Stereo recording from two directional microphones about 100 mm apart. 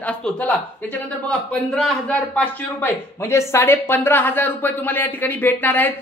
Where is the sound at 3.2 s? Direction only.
30° left (ahead or behind).